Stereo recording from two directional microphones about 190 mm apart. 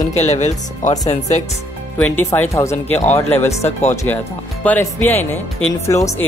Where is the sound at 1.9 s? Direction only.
10° left (ahead or behind).